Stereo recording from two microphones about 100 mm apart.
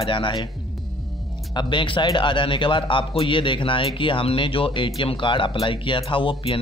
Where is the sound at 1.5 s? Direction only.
50° left (ahead or behind).